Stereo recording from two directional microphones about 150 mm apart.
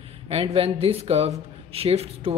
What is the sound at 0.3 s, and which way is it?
Speech, 40° right (ahead or behind).